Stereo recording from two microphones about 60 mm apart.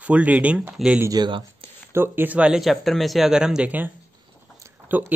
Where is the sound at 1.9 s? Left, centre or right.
Right.